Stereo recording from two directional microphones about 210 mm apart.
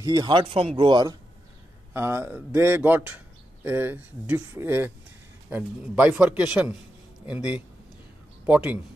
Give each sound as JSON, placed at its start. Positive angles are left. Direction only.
{"t": 0.0, "sound": "a man's voice", "side_deg": -20}